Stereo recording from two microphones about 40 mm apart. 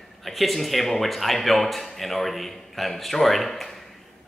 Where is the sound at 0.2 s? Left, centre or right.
Centre.